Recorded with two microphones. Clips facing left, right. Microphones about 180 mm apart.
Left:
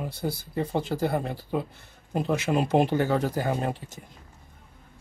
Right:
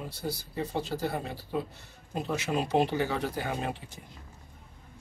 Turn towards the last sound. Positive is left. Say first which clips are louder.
# left 5 dB
turn(degrees=40)  # may be behind; listen again after turning